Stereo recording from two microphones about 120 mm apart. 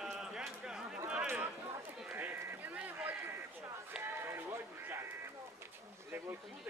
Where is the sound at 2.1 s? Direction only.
15° right (ahead or behind).